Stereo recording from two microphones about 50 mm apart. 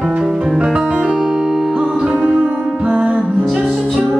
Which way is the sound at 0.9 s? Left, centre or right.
Right.